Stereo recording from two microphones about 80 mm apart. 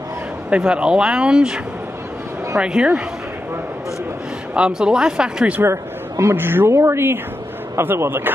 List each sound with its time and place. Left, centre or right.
0.5 s speech: centre
4.6 s speech: centre
5.6 s a man's voice: right